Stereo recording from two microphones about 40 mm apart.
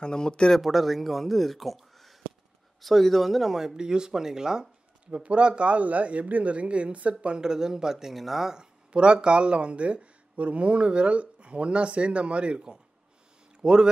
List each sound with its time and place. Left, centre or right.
0.0 s speech: left
0.6 s speech: centre
5.0 s speech: right
7.4 s speech: centre
8.5 s speech: right